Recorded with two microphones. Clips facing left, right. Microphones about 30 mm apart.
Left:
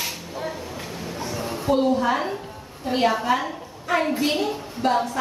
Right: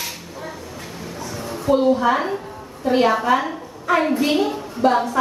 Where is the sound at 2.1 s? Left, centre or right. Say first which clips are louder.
Right 4 dB; centre.